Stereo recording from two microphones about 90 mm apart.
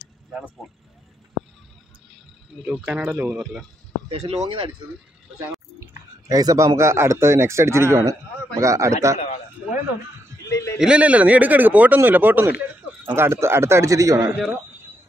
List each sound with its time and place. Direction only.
2.6 s speech: 10° right (ahead or behind)
4.1 s speech: 80° right
5.8 s chewing: 45° right (ahead or behind)
6.8 s a man's voice: 30° right (ahead or behind)
10.5 s a sound: 35° left (ahead or behind)
10.8 s a man's voice: 10° right (ahead or behind); by 14.3 s 40° right (ahead or behind)